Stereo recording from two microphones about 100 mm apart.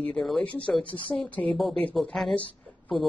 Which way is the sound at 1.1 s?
15° left (ahead or behind).